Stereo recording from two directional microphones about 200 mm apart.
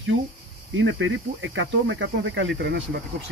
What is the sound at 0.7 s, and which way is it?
Speech, 70° right (ahead or behind).